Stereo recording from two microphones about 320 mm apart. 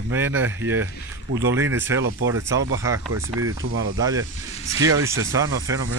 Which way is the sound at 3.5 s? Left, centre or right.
Right.